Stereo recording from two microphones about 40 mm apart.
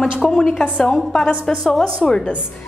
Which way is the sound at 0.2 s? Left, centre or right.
Centre.